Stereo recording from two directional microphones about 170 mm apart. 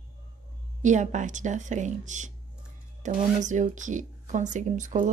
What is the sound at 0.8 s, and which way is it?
Speech, 45° right (ahead or behind).